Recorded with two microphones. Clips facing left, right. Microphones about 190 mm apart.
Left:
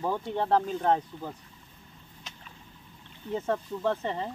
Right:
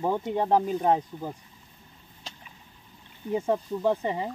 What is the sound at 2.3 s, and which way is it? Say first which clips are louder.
Boat: right 5 dB; 30° right (ahead or behind).